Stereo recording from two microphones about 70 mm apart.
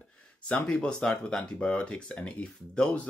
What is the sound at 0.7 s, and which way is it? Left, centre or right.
Speech, centre.